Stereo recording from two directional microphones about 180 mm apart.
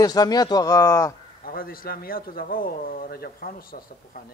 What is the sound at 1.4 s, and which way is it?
A man's voice, 55° left (ahead or behind).